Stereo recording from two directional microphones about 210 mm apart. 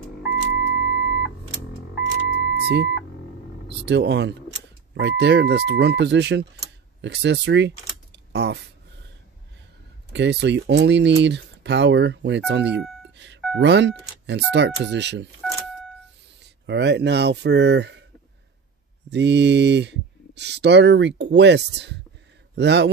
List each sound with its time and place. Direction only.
0.5 s music: 55° left (ahead or behind)
2.5 s a sound: 55° right (ahead or behind)
3.8 s speech: 55° right (ahead or behind)
10.1 s speech: 55° right (ahead or behind)
16.6 s speech: 55° right (ahead or behind)
19.0 s speech: 55° right (ahead or behind)